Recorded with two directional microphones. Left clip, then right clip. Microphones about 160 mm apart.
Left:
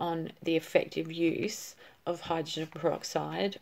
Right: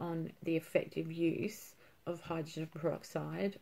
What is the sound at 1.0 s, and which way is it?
Speech, 10° right (ahead or behind).